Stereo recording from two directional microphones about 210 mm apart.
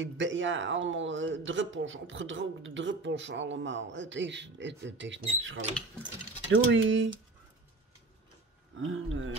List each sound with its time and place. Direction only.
0.0 s speech: 60° right (ahead or behind)
8.7 s speech: 70° right (ahead or behind)